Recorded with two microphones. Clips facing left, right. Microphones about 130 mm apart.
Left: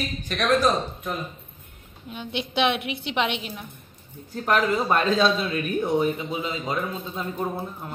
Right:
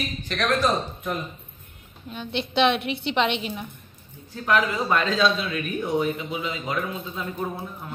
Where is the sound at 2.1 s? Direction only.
10° left (ahead or behind).